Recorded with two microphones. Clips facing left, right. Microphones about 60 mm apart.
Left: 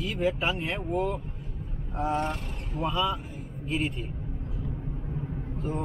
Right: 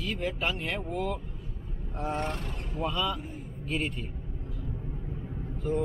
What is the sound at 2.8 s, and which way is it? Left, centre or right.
Speech, centre.